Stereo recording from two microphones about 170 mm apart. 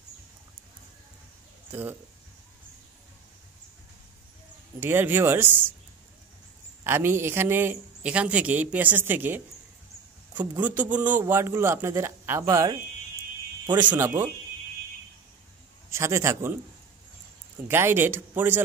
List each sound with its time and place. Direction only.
1.7 s speech: 10° right (ahead or behind)
4.7 s speech: 15° right (ahead or behind)
6.8 s speech: 15° right (ahead or behind)
10.4 s speech: 10° right (ahead or behind)
13.8 s speech: 15° right (ahead or behind)
15.9 s speech: 15° right (ahead or behind)
17.6 s speech: 15° right (ahead or behind)